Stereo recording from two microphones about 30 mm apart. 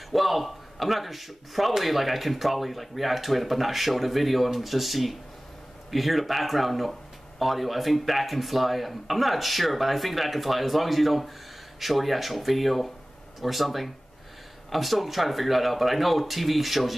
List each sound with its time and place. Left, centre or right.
0.1 s a man's voice: centre